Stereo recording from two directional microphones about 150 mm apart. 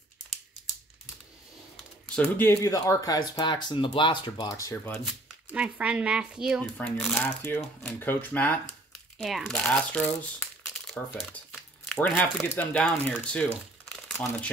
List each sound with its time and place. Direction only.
2.1 s speech: 15° left (ahead or behind)
5.5 s speech: 10° right (ahead or behind); by 13.5 s 5° left (ahead or behind)